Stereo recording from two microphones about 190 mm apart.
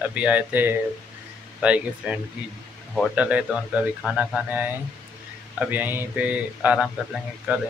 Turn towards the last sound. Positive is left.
turn(degrees=0)  # may be behind; listen again after turning